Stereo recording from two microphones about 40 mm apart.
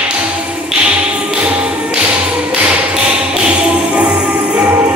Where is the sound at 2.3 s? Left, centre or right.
Right.